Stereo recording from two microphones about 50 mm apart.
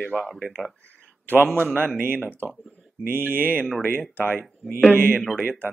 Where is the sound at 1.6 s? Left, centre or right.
Right.